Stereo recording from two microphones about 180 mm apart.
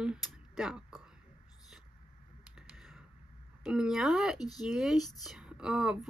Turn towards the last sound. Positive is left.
turn(degrees=-5)  # may be behind; listen again after turning